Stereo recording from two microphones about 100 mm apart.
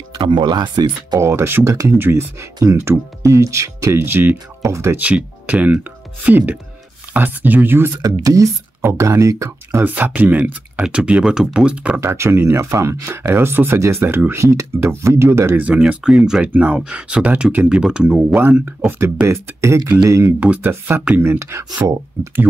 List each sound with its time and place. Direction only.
0.2 s speech: 50° right (ahead or behind)
1.2 s speech: 25° right (ahead or behind)
4.6 s speech: 30° right (ahead or behind)
4.9 s speech: 15° right (ahead or behind)
8.0 s speech: 35° right (ahead or behind); by 12.0 s 10° right (ahead or behind)
12.0 s speech: 25° right (ahead or behind)
15.6 s speech: 15° right (ahead or behind); by 20.3 s 30° right (ahead or behind)
20.3 s speech: 15° right (ahead or behind)
21.6 s speech: 45° right (ahead or behind)
22.2 s speech: 20° right (ahead or behind)